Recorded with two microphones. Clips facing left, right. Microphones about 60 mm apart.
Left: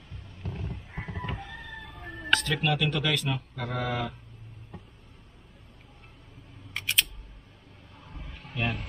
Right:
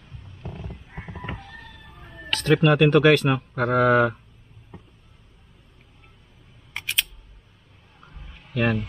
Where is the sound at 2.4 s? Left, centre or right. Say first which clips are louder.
Right 10 dB; right.